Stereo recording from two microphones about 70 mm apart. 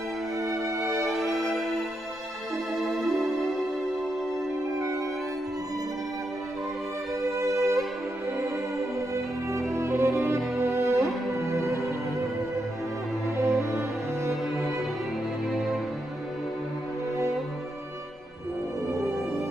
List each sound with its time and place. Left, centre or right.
0.4 s music: right
1.3 s music: centre
2.8 s music: centre
7.3 s music: right
9.1 s music: right
13.4 s music: right